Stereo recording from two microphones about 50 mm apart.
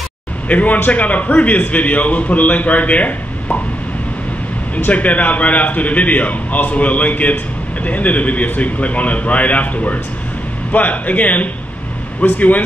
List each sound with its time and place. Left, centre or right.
0.5 s a man's voice: left
4.7 s a man's voice: left